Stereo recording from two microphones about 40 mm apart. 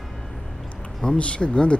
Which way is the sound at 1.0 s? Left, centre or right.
Left.